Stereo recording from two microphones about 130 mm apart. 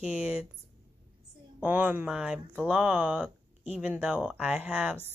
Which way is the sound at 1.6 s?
10° right (ahead or behind).